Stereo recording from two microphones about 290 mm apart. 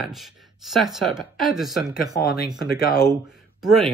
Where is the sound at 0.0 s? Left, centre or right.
Centre.